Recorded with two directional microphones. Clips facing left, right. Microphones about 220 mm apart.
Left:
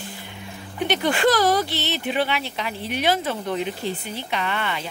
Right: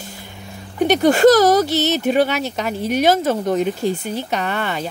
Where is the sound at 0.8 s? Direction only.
40° right (ahead or behind).